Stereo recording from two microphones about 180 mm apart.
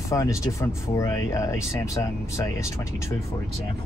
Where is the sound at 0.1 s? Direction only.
15° left (ahead or behind).